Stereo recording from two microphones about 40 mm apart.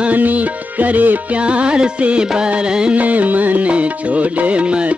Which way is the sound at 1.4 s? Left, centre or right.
Right.